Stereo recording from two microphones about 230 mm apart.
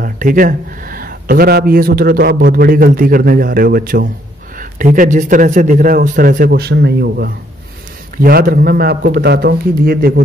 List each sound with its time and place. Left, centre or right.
0.0 s speech: right